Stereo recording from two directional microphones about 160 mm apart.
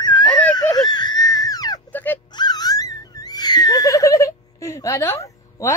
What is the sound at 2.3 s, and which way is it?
Music, 25° left (ahead or behind).